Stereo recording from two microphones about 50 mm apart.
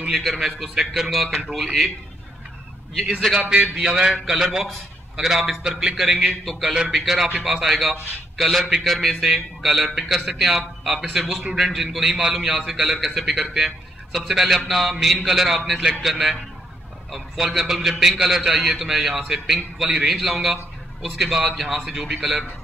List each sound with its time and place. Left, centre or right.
0.1 s a man's voice: centre
3.3 s a man's voice: centre
3.6 s a man's voice: centre
6.4 s a man's voice: centre